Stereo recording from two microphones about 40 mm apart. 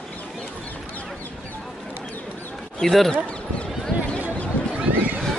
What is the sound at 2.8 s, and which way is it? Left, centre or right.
Speech, centre.